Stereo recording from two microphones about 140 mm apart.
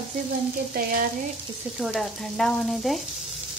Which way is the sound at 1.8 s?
Centre (ahead or behind).